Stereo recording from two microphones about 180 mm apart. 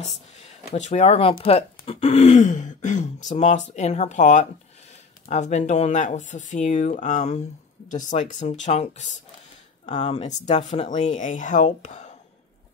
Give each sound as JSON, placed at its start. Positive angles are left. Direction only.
{"t": 0.4, "sound": "speech", "side_deg": 40}